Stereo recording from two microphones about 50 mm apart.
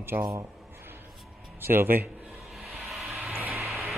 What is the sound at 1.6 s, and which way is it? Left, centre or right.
Speech, right.